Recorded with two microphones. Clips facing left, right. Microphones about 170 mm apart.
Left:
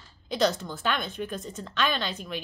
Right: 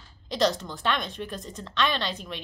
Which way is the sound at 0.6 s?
5° left (ahead or behind).